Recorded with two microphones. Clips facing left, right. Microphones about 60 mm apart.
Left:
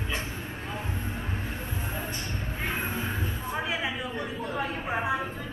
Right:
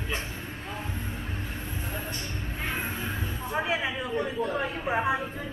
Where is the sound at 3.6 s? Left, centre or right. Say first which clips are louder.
Right 2 dB; centre.